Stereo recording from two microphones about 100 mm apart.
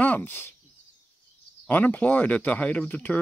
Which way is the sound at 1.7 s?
15° left (ahead or behind).